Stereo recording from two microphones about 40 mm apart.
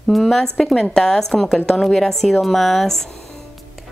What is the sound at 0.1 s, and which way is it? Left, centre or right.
A woman's voice, centre.